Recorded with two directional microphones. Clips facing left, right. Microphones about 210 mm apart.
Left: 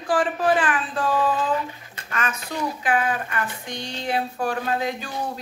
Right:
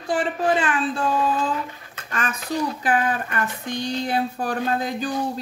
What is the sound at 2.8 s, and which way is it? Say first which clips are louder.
Speech: right 1 dB; 40° right (ahead or behind).